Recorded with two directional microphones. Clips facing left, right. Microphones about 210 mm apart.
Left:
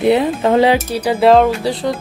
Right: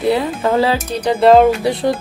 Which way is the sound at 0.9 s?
5° left (ahead or behind).